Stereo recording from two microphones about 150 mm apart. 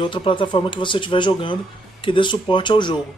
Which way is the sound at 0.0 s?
35° left (ahead or behind).